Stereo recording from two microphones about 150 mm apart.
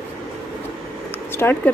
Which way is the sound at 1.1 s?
15° left (ahead or behind).